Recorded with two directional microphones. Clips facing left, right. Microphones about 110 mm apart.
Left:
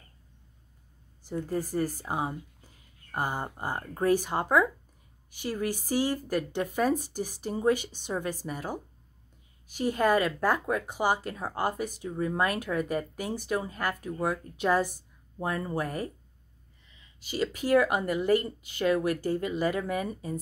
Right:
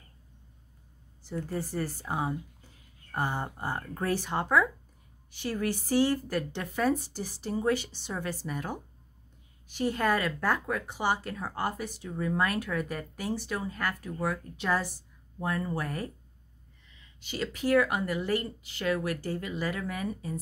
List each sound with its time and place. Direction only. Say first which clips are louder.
1.7 s speech: left 3 dB; 15° left (ahead or behind)
9.8 s speech: left 3 dB; 15° left (ahead or behind)
17.3 s speech: left 2 dB; 10° left (ahead or behind)